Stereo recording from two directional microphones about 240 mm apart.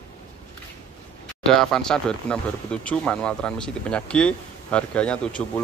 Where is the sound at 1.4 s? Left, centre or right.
Centre.